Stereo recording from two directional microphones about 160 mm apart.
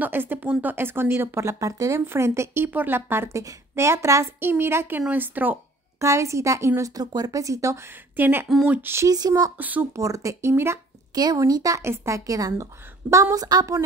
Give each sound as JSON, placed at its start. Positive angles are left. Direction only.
{"t": 0.0, "sound": "speech", "side_deg": -10}
{"t": 9.6, "sound": "a woman's voice", "side_deg": -10}